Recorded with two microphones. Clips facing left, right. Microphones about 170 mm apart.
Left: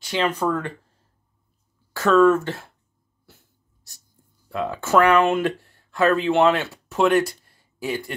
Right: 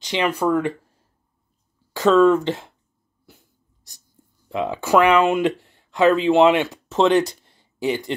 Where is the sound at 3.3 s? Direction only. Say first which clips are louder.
Right 3 dB; 15° right (ahead or behind).